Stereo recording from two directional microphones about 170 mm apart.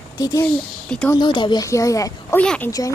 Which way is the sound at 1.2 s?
25° left (ahead or behind).